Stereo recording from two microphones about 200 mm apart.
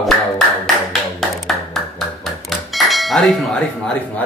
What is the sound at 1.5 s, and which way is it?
Music, centre (ahead or behind).